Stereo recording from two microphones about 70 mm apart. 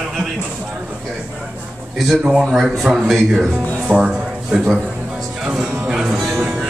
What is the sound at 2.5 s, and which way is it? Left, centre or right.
A man's voice, centre.